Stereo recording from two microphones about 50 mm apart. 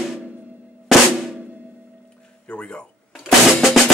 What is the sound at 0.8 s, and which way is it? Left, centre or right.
Drum, centre.